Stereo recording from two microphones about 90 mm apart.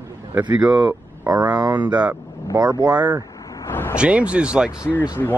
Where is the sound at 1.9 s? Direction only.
15° right (ahead or behind).